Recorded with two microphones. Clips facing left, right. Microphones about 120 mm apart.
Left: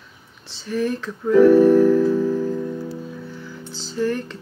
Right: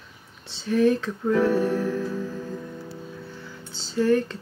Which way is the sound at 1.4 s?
60° left (ahead or behind).